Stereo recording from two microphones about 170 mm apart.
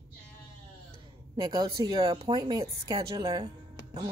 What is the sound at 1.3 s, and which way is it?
Speech, 25° right (ahead or behind).